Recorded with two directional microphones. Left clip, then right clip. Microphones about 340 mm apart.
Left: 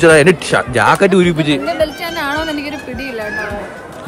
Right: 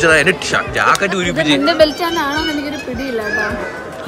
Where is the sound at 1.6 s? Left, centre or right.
Right.